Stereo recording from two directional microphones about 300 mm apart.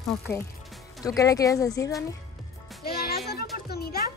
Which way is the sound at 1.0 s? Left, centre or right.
Centre.